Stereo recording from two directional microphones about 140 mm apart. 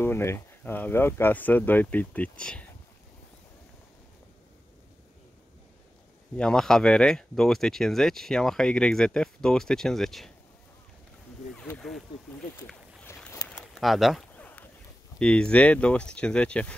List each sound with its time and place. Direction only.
0.0 s speech: 15° left (ahead or behind)
6.3 s speech: 5° left (ahead or behind)
13.0 s boat: 15° left (ahead or behind)
13.5 s a sound: 5° left (ahead or behind)
14.4 s a sound: 10° left (ahead or behind)
15.1 s speech: 5° left (ahead or behind)